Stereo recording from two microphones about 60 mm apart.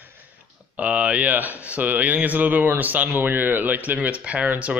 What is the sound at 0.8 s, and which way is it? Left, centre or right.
Speech, right.